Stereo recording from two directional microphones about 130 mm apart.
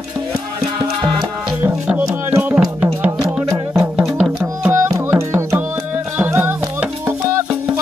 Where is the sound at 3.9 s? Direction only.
10° right (ahead or behind).